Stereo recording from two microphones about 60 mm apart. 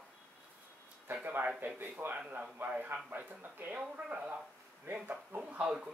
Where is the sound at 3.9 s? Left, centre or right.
Right.